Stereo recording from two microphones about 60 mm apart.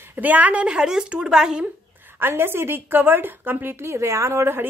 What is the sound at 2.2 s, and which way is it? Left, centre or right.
Speech, right.